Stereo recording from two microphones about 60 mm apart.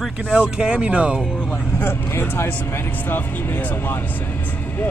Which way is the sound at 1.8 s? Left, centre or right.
Left.